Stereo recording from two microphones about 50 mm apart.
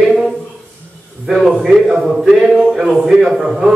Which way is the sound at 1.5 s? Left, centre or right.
Centre.